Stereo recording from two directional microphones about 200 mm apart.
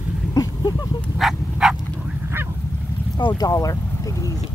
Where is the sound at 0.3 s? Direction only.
20° left (ahead or behind).